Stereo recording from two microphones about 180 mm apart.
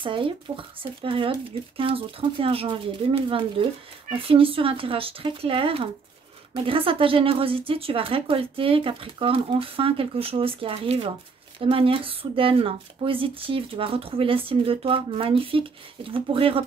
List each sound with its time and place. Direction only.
0.0 s speech: 30° right (ahead or behind)